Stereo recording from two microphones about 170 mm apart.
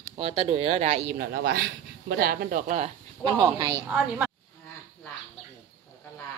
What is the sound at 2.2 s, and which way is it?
Speech, 60° right (ahead or behind).